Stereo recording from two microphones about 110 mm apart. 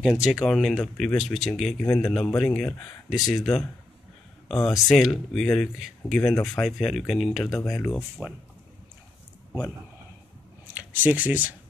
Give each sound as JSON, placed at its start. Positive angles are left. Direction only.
{"t": 0.0, "sound": "speech", "side_deg": -5}
{"t": 8.2, "sound": "speech", "side_deg": -10}
{"t": 10.7, "sound": "speech", "side_deg": -15}